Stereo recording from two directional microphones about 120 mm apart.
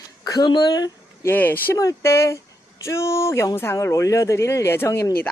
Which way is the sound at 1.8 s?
25° left (ahead or behind).